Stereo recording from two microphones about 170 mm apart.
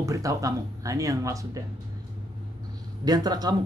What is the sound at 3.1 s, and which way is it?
Speech, 25° right (ahead or behind).